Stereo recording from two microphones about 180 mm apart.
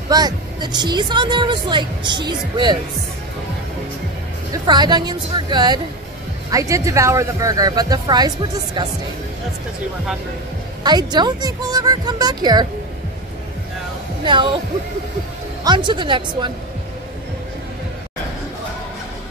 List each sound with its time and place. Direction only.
0.1 s speech: 25° right (ahead or behind)
4.5 s speech: 25° right (ahead or behind)
10.8 s speech: 20° right (ahead or behind)
14.2 s speech: 25° right (ahead or behind)
15.6 s speech: 25° right (ahead or behind)